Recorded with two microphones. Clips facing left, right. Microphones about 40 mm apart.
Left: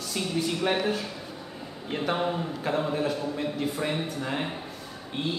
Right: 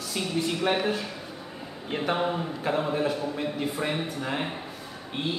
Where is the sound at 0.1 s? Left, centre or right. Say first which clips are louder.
Even; centre.